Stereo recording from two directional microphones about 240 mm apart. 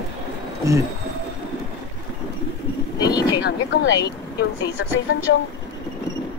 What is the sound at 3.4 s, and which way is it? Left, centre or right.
Speech, left.